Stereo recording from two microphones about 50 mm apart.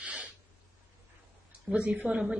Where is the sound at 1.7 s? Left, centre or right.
Right.